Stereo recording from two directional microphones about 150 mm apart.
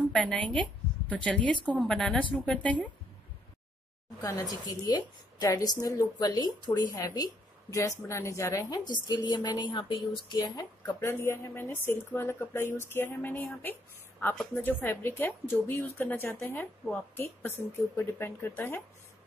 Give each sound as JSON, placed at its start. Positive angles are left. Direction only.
{"t": 0.1, "sound": "a woman's voice", "side_deg": 10}
{"t": 4.2, "sound": "a woman's voice", "side_deg": 25}